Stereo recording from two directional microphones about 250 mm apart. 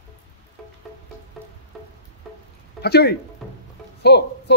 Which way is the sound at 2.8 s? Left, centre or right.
Left.